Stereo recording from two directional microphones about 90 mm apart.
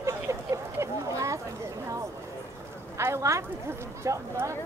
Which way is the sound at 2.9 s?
30° right (ahead or behind).